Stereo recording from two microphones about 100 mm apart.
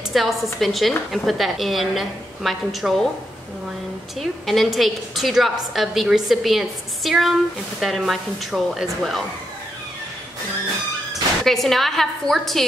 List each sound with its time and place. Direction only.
0.1 s a woman's voice: centre (ahead or behind)
4.2 s a woman's voice: centre (ahead or behind)
11.4 s a woman's voice: centre (ahead or behind)